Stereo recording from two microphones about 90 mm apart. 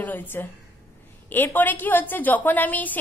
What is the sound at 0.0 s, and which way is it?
A woman's voice, 20° left (ahead or behind).